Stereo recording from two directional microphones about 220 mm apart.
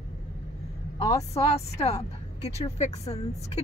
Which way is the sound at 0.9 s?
30° left (ahead or behind).